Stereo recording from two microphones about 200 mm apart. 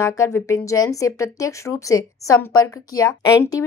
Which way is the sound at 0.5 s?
15° left (ahead or behind).